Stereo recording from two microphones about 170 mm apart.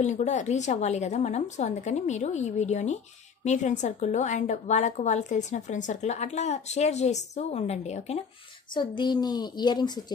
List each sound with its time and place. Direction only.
0.0 s a woman's voice: 45° left (ahead or behind)
8.7 s a child's voice: 25° left (ahead or behind)